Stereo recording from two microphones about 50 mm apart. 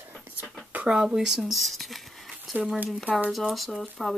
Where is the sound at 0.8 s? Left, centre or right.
Centre.